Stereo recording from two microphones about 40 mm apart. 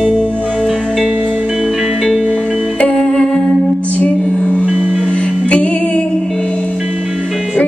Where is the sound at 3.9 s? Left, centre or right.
Left.